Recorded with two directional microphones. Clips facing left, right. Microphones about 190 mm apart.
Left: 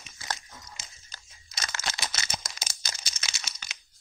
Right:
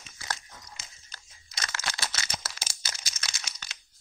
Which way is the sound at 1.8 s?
15° left (ahead or behind).